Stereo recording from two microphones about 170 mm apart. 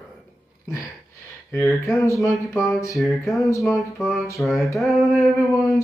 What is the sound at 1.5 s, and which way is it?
Speech, 15° left (ahead or behind).